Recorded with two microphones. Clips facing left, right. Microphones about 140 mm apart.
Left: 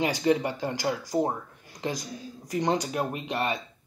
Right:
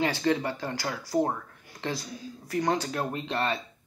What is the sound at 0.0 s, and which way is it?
Speech, 15° left (ahead or behind).